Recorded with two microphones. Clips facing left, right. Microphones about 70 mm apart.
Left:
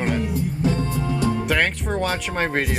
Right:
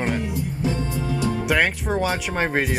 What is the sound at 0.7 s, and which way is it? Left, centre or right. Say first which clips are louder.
Music: left 2 dB; left.